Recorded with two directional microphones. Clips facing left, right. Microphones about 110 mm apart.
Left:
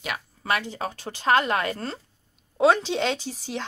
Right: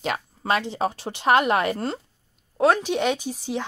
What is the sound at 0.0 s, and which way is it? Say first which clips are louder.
A woman's voice: right 5 dB; 30° right (ahead or behind).